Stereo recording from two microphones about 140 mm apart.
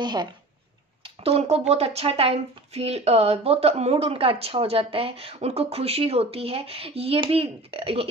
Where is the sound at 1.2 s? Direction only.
50° right (ahead or behind).